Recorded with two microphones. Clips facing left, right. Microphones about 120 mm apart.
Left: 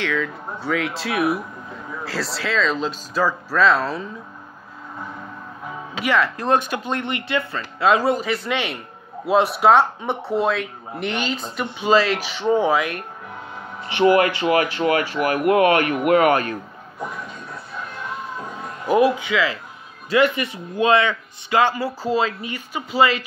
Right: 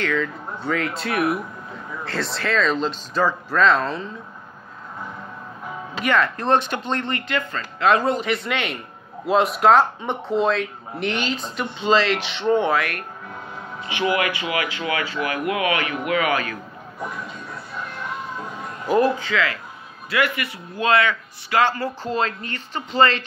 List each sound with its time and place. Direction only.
0.0 s speech: 5° left (ahead or behind)
6.0 s a man's voice: 5° left (ahead or behind)
13.9 s speech: 40° left (ahead or behind)
18.9 s a man's voice: 10° left (ahead or behind)